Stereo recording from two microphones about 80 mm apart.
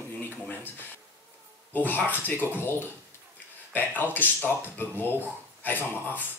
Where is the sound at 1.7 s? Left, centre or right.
Left.